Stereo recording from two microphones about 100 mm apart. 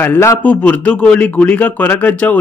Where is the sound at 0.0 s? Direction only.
25° left (ahead or behind).